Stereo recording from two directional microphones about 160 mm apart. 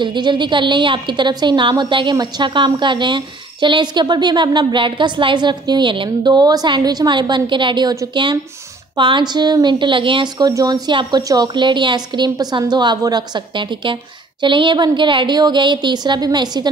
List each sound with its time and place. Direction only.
0.0 s a woman's voice: 30° right (ahead or behind)